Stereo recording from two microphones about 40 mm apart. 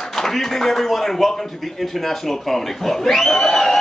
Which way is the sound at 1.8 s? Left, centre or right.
Centre.